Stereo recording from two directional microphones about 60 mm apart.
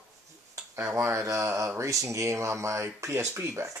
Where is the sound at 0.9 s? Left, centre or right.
Right.